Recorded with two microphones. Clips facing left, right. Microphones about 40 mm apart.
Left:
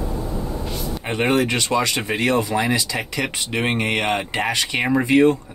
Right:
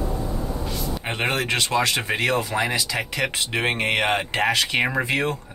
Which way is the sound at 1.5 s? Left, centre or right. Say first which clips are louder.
Left 1 dB; centre.